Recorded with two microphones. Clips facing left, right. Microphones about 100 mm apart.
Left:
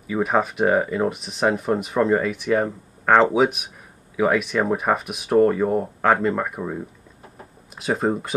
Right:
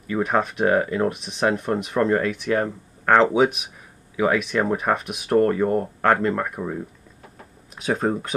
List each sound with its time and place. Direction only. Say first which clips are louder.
0.0 s speech: left 1 dB; 5° left (ahead or behind)